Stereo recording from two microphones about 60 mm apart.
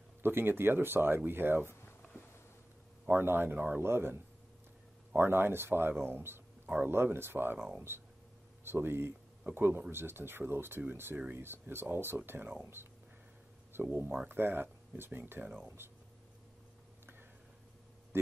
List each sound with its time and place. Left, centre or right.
0.2 s speech: right
2.1 s a sound: left
3.1 s speech: right
7.5 s speech: centre
8.6 s speech: right
13.7 s speech: right
18.1 s speech: right